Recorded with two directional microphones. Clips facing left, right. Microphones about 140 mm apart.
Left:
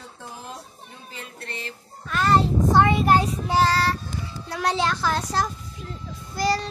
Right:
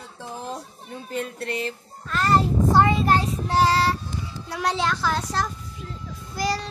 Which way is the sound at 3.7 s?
15° right (ahead or behind).